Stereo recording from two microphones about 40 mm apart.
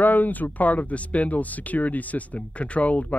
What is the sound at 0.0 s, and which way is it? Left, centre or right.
Speech, left.